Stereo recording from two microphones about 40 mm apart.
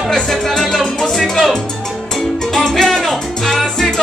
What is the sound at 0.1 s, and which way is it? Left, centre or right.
Music, centre.